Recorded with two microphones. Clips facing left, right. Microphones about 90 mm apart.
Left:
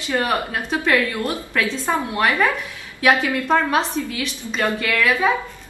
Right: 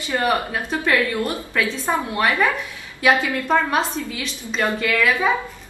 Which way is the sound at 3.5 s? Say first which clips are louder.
Even; centre (ahead or behind).